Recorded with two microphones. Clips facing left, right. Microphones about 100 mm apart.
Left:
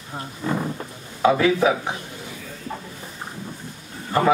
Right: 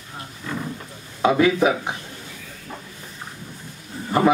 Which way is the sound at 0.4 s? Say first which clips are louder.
Left 6 dB; 35° left (ahead or behind).